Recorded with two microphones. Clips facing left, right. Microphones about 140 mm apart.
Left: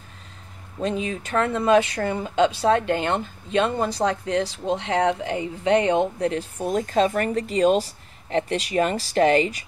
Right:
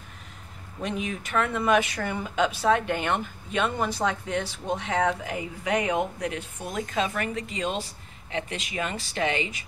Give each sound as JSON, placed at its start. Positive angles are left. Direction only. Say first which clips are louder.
{"t": 0.7, "sound": "speech", "louder": "left 5 dB", "side_deg": 30}